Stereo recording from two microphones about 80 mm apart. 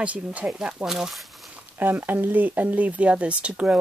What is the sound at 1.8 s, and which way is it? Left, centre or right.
Speech, right.